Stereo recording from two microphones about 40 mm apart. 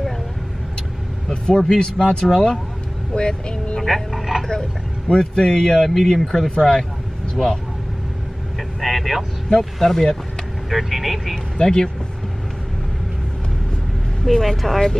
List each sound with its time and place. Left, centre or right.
1.3 s speech: centre
2.0 s speech: centre
3.2 s speech: left
3.8 s a sound: centre
4.5 s speech: centre
5.8 s speech: centre
8.8 s speech: centre
10.7 s speech: centre
11.5 s speech: centre
14.2 s speech: centre